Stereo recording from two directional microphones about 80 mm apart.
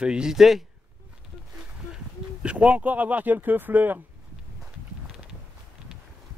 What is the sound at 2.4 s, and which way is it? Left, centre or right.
Speech, centre.